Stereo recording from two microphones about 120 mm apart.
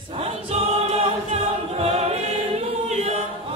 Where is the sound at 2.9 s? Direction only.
70° right (ahead or behind).